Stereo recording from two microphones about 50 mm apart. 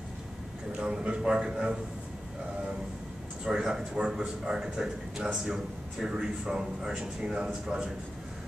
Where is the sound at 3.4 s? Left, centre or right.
Centre.